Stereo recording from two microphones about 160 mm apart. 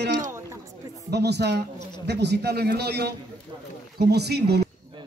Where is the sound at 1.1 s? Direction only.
90° right.